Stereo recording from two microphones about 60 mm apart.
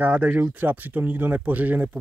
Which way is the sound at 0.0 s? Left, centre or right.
Right.